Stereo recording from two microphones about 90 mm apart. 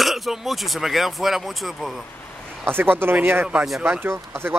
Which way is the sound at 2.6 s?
25° right (ahead or behind).